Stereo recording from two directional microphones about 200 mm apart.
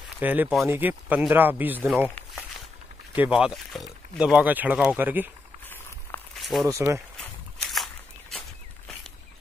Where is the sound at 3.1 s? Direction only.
5° right (ahead or behind).